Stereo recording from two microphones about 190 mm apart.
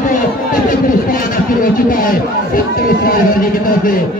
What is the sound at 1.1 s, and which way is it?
Speech, 45° left (ahead or behind).